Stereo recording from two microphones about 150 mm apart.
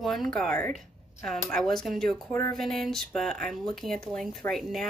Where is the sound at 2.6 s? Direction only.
Centre (ahead or behind).